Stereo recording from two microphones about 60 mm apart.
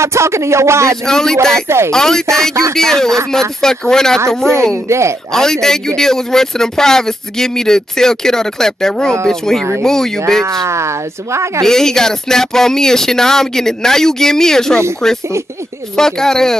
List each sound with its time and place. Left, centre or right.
0.0 s speech: right
1.0 s a man's voice: centre
1.5 s speech: right
1.9 s a man's voice: centre
4.8 s speech: right
5.3 s a man's voice: centre
10.4 s speech: right
11.6 s a man's voice: centre